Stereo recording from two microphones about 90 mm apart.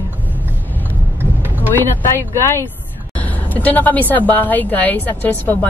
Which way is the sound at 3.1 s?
20° left (ahead or behind).